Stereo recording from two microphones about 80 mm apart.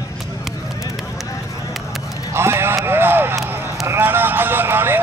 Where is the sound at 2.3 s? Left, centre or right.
Right.